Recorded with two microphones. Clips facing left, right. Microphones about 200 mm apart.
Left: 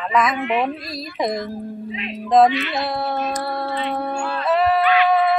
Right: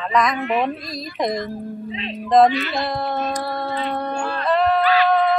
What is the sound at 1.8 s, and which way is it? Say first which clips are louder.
Speech: even; 30° right (ahead or behind).